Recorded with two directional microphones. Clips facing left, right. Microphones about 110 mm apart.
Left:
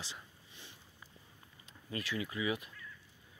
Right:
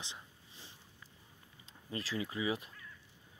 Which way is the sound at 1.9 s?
30° right (ahead or behind).